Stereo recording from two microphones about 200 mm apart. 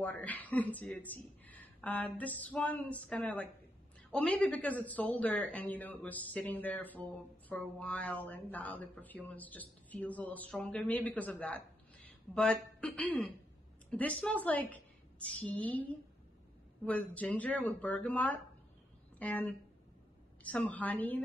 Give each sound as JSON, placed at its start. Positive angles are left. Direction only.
{"t": 0.0, "sound": "a woman's voice", "side_deg": 5}